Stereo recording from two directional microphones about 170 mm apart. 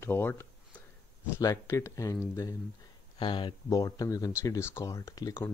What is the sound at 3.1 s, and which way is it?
Speech, 30° left (ahead or behind).